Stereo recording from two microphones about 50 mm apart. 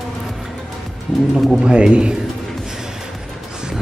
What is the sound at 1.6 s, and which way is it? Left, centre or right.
Speech, centre.